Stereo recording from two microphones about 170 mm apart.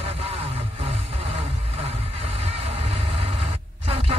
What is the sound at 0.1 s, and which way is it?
Music, 35° right (ahead or behind).